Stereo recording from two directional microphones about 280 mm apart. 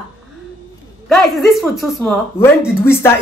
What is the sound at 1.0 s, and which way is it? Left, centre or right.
A woman's voice, centre.